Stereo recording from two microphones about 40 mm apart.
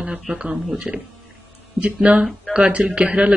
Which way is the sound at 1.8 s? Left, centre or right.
Right.